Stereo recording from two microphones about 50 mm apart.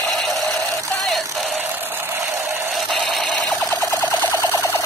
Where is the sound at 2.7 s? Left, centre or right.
Centre.